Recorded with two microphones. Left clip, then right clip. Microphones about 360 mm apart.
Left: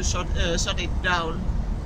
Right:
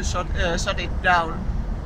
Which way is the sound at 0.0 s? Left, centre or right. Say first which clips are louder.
Right 3 dB; centre.